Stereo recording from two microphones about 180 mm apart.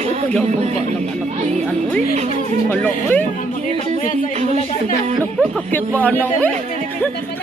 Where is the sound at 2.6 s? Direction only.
10° left (ahead or behind).